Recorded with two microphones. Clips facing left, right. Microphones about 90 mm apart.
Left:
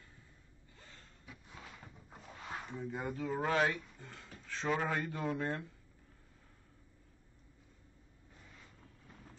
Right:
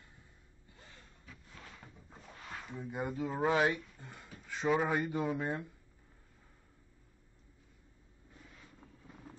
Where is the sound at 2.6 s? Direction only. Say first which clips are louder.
Right 3 dB; 10° right (ahead or behind).